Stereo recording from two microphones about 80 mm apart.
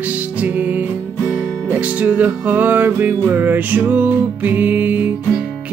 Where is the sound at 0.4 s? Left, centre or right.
Right.